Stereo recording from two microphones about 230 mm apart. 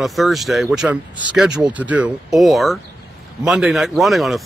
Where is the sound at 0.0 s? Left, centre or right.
Centre.